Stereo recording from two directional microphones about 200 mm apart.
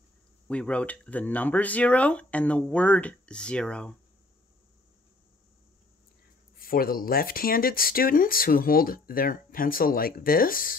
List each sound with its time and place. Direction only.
0.5 s speech: 5° left (ahead or behind)
6.6 s speech: 45° left (ahead or behind)